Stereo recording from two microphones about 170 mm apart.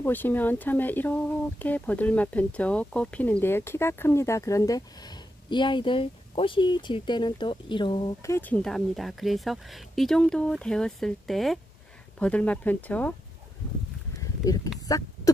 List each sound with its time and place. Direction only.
0.0 s speech: 10° left (ahead or behind); by 8.1 s 25° left (ahead or behind)
8.2 s speech: 15° left (ahead or behind)
14.2 s a sound: 20° left (ahead or behind)